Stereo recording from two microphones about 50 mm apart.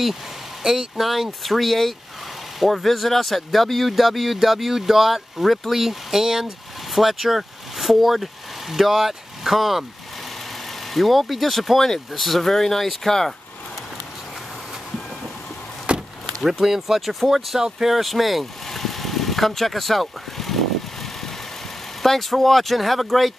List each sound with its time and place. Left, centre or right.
0.7 s speech: centre
10.9 s speech: centre
15.9 s chop: right
16.4 s speech: centre
17.6 s vehicle: centre
22.0 s speech: centre